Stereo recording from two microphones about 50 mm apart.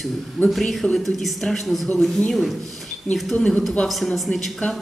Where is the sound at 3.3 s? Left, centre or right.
Left.